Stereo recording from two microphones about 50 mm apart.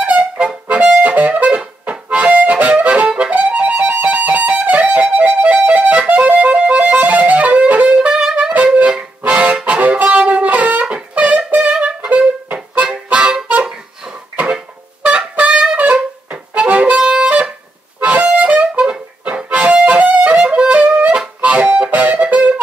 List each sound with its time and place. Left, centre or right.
0.0 s music: right
0.9 s harmonica: right
5.1 s music: right
8.1 s music: centre
9.2 s music: right
12.7 s harmonica: right
14.3 s music: right
16.9 s music: centre